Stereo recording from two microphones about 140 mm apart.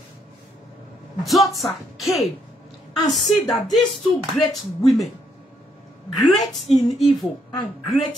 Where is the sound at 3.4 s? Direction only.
Centre (ahead or behind).